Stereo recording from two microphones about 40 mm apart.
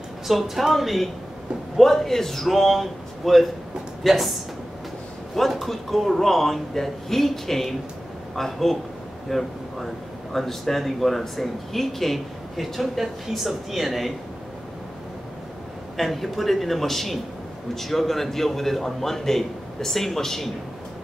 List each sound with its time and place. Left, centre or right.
0.3 s speech: centre
16.0 s a man's voice: centre